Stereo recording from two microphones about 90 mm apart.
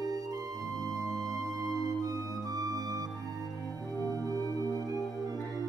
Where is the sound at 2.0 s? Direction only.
45° right (ahead or behind).